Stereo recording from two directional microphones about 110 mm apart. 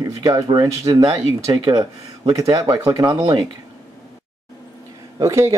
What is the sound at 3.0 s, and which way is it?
Speech, 45° right (ahead or behind).